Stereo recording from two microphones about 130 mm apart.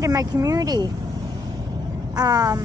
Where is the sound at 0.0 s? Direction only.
25° right (ahead or behind).